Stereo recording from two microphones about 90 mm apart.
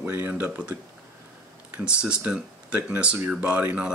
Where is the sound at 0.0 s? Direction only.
20° right (ahead or behind).